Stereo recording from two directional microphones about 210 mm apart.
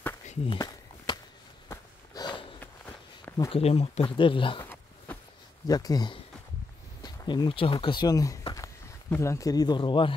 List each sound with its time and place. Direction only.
0.6 s walk: 20° left (ahead or behind)
1.7 s snort: 20° left (ahead or behind)
3.4 s speech: 30° left (ahead or behind)
4.6 s a sound: 10° left (ahead or behind)
5.7 s speech: 15° left (ahead or behind)